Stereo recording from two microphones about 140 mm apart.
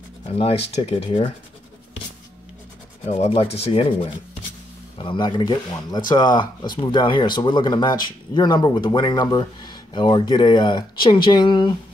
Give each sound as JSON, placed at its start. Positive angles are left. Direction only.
{"t": 0.3, "sound": "speech", "side_deg": 45}
{"t": 3.1, "sound": "speech", "side_deg": 50}
{"t": 4.9, "sound": "speech", "side_deg": 35}